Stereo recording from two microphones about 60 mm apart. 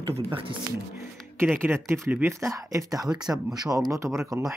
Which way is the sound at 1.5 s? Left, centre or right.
Right.